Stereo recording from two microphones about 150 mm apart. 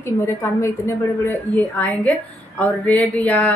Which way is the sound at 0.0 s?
15° left (ahead or behind).